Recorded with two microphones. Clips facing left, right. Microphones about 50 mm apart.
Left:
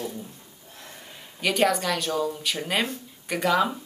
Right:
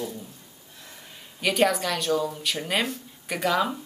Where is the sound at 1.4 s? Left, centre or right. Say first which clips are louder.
Even; centre.